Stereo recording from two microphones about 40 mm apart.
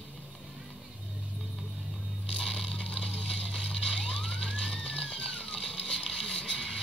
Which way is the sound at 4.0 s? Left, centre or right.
Centre.